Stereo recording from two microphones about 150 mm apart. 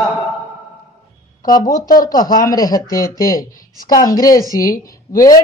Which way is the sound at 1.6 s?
70° left (ahead or behind).